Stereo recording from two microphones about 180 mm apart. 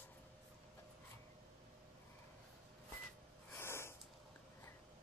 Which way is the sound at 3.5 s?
15° left (ahead or behind).